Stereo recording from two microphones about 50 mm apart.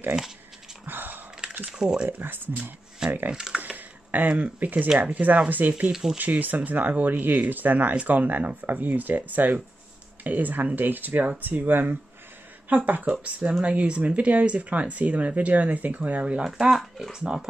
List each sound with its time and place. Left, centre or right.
0.1 s speech: right
0.8 s a sound: right
1.7 s speech: centre
2.0 s speech: right
3.3 s speech: centre
3.6 s a sound: right
5.1 s speech: right
5.9 s speech: centre
6.1 s speech: right
16.4 s speech: centre